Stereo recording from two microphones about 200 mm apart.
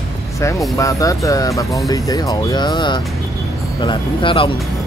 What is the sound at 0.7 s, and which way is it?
Speech, 15° left (ahead or behind).